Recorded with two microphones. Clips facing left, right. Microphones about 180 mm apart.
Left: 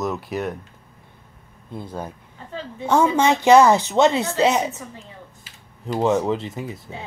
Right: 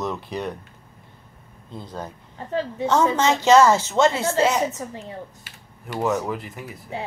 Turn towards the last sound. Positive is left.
turn(degrees=25)  # may be behind; listen again after turning